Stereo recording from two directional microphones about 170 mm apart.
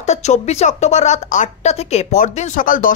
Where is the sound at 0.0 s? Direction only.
40° left (ahead or behind).